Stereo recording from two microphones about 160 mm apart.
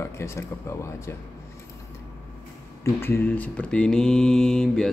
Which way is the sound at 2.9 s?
15° left (ahead or behind).